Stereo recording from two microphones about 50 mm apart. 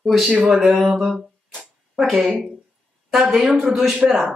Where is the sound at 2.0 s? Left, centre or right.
Centre.